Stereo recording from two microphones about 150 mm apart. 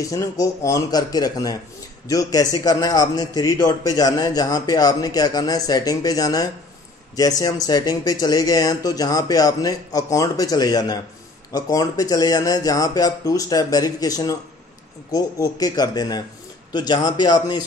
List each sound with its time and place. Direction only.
0.0 s a man's voice: 20° left (ahead or behind)